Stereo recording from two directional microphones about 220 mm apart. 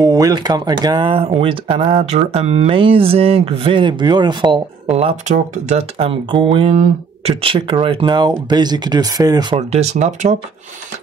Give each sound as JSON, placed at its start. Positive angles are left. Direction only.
{"t": 0.0, "sound": "speech", "side_deg": -15}
{"t": 9.6, "sound": "speech", "side_deg": -30}